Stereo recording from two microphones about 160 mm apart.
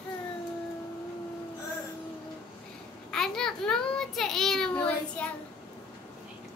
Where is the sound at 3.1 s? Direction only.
5° left (ahead or behind).